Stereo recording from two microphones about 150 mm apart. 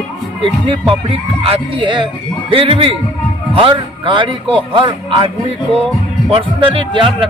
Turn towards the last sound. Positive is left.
turn(degrees=-35)  # may be behind; listen again after turning